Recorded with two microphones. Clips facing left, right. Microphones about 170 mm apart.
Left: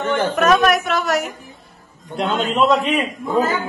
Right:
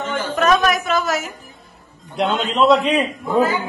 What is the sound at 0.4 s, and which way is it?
A woman's voice, centre (ahead or behind).